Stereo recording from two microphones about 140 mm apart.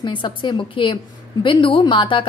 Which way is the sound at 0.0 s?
35° left (ahead or behind).